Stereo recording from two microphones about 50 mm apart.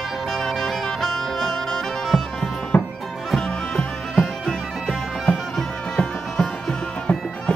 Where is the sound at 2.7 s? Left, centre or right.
Left.